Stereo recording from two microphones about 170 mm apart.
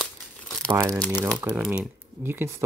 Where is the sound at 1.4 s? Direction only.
10° right (ahead or behind).